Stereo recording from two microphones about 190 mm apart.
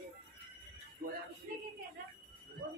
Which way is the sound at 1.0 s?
55° right (ahead or behind).